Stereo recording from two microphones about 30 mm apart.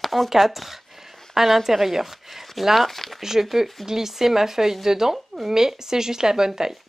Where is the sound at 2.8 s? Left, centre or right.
Centre.